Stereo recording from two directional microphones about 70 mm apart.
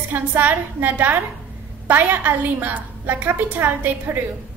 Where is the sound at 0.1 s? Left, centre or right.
Right.